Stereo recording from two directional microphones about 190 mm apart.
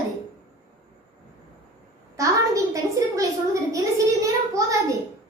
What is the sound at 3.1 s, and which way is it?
A child's voice, 15° right (ahead or behind).